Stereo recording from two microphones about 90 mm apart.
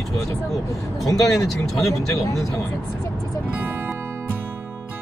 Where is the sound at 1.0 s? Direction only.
Centre (ahead or behind).